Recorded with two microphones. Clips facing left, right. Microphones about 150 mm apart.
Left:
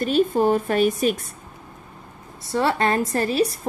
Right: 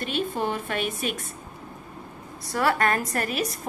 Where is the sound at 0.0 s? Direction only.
40° left (ahead or behind).